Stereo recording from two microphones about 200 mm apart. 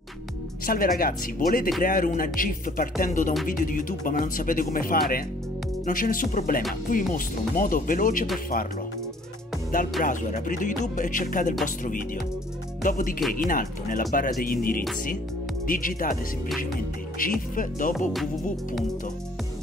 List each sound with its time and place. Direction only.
0.7 s speech: 45° left (ahead or behind)
9.7 s speech: 40° left (ahead or behind)
17.2 s speech: 45° left (ahead or behind)